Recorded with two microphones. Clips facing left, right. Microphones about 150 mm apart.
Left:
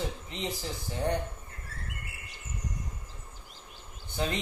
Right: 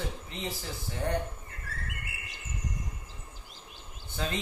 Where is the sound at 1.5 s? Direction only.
90° right.